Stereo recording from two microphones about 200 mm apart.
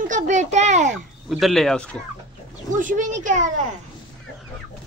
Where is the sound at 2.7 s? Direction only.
40° right (ahead or behind).